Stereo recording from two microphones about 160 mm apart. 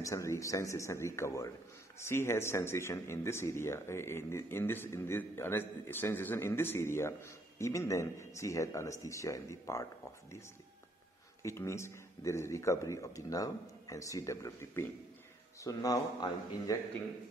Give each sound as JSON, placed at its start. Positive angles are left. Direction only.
{"t": 0.0, "sound": "speech", "side_deg": 20}
{"t": 11.4, "sound": "speech", "side_deg": 15}